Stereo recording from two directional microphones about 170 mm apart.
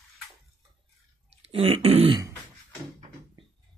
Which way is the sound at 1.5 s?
35° right (ahead or behind).